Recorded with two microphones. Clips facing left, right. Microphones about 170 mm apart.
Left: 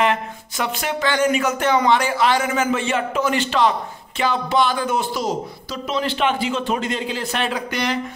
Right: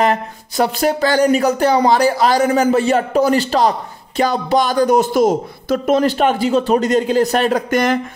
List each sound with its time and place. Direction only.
0.0 s a man's voice: 40° right (ahead or behind)